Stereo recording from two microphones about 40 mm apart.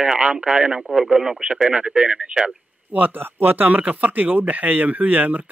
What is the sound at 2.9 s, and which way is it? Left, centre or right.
Speech, right.